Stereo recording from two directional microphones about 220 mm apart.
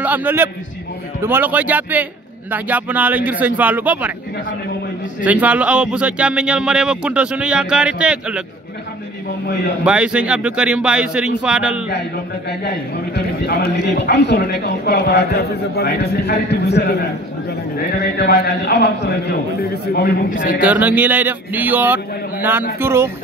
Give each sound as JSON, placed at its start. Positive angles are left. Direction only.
{"t": 0.0, "sound": "a man's voice", "side_deg": -10}
{"t": 5.2, "sound": "speech", "side_deg": -5}
{"t": 9.8, "sound": "speech", "side_deg": -5}
{"t": 12.4, "sound": "a man's voice", "side_deg": 50}
{"t": 20.6, "sound": "a man's voice", "side_deg": -5}